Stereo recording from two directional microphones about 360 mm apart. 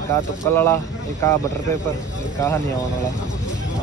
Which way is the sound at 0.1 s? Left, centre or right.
Centre.